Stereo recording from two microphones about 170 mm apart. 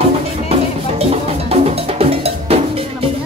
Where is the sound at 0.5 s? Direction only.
35° right (ahead or behind).